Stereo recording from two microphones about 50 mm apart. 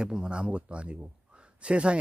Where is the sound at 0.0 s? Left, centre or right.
Centre.